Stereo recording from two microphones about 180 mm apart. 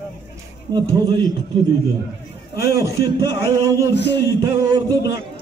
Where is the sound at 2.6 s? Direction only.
15° right (ahead or behind).